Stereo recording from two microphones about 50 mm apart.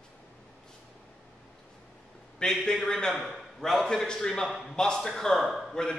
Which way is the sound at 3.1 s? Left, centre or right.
Centre.